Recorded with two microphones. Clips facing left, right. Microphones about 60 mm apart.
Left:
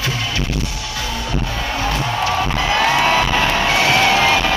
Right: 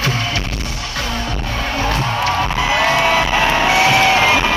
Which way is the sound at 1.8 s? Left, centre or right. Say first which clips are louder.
Right 1 dB; right.